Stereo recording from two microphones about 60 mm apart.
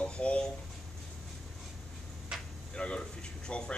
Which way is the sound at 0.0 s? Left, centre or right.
Centre.